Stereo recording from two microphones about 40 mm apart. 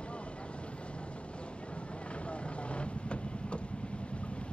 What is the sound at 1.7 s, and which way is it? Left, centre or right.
Vehicle, left.